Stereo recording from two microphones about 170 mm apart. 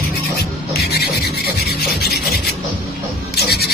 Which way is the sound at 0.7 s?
70° left (ahead or behind).